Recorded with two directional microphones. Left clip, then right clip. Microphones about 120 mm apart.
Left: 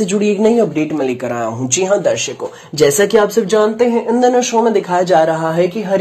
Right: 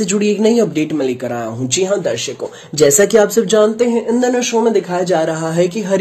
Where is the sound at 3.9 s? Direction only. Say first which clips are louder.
Left 3 dB; 55° right (ahead or behind).